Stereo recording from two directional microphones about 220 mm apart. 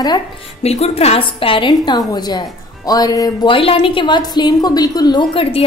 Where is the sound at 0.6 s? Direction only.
30° left (ahead or behind).